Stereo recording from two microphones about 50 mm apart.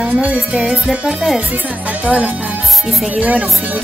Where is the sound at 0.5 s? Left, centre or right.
Centre.